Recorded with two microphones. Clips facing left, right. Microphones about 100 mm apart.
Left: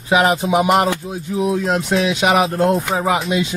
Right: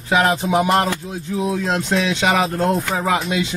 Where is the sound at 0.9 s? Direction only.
15° left (ahead or behind).